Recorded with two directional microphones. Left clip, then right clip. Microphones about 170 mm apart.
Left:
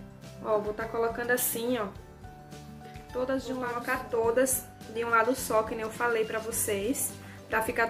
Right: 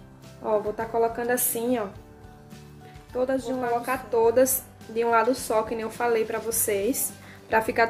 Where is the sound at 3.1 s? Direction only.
45° right (ahead or behind).